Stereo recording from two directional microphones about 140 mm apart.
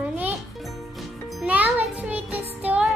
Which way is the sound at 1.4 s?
10° right (ahead or behind).